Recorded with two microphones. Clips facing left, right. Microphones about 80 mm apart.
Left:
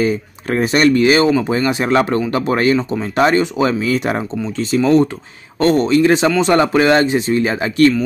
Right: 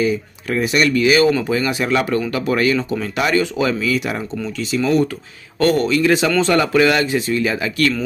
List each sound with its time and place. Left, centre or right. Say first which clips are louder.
0.0 s speech: left 2 dB; left